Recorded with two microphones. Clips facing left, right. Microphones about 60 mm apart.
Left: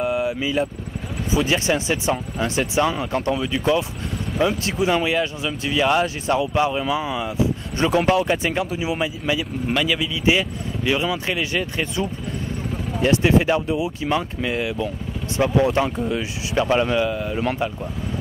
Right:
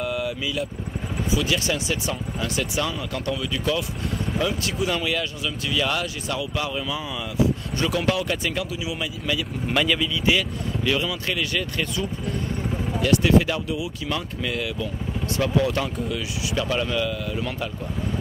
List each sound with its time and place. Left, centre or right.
0.0 s vehicle: left
1.3 s speech: left
9.8 s speech: centre
10.9 s speech: left